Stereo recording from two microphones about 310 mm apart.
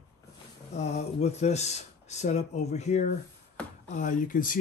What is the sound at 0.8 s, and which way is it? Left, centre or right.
Speech, left.